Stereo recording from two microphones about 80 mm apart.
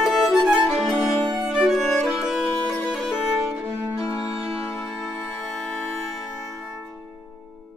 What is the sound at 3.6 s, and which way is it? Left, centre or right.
Music, right.